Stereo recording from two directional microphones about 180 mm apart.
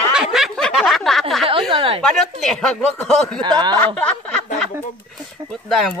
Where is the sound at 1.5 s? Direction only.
30° right (ahead or behind).